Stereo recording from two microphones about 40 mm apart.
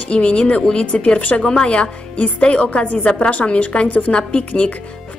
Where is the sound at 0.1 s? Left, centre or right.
Left.